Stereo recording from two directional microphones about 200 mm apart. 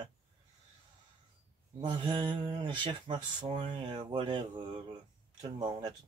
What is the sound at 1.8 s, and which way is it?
Speech, 25° right (ahead or behind).